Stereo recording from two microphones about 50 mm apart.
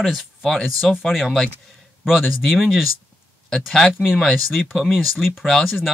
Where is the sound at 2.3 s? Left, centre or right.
Centre.